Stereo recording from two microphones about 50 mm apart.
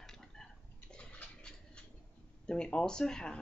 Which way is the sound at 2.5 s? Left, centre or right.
Centre.